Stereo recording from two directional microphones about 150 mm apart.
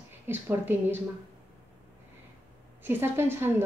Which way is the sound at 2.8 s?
15° right (ahead or behind).